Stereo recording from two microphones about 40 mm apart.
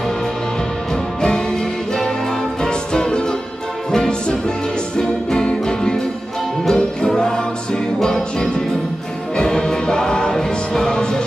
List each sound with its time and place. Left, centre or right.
2.6 s music: left